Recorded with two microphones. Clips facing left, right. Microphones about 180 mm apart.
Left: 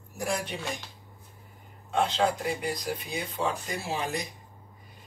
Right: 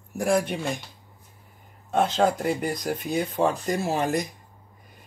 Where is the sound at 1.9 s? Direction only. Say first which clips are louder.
Right 4 dB; 45° right (ahead or behind).